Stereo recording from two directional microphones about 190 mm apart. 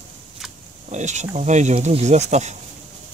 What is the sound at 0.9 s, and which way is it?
Speech, 40° right (ahead or behind).